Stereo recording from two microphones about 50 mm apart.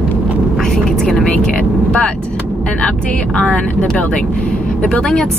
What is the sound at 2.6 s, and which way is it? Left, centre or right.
Speech, left.